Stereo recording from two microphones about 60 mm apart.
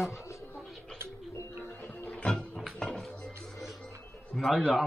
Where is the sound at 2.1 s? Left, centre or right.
Centre.